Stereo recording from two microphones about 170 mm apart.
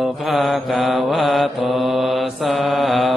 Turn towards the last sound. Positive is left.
turn(degrees=0)  # may be behind; listen again after turning